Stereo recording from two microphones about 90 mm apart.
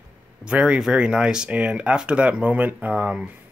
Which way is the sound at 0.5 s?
15° right (ahead or behind).